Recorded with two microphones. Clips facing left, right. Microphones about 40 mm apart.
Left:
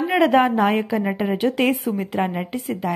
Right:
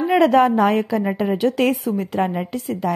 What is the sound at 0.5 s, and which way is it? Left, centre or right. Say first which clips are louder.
A woman's voice: right 2 dB; centre.